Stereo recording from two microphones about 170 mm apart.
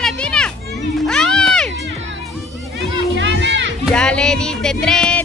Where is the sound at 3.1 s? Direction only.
90° right.